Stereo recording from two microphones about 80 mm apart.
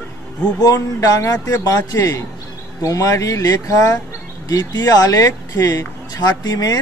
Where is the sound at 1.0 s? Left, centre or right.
Left.